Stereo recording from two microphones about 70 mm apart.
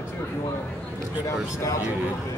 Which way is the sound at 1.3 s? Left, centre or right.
Left.